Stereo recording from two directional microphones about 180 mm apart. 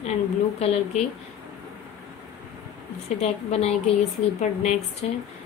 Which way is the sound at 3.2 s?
35° left (ahead or behind).